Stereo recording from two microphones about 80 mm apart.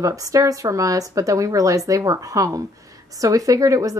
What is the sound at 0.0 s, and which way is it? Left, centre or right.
Speech, right.